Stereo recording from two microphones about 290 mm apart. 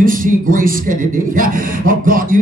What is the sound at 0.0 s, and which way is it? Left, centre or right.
A man's voice, right.